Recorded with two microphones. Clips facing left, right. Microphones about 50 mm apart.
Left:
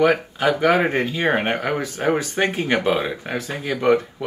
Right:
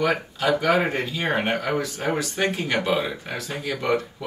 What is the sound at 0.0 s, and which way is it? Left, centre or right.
Speech, left.